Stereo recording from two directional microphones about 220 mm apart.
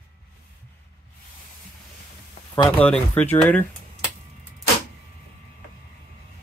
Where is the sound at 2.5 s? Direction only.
10° left (ahead or behind).